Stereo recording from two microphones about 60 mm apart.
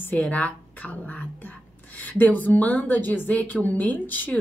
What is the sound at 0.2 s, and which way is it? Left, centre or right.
Speech, left.